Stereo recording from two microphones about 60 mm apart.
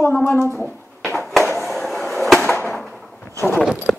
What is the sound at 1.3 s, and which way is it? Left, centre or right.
Skateboard, centre.